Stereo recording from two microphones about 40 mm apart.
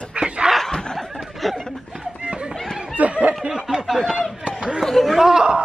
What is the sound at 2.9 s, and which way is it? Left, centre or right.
Snicker, right.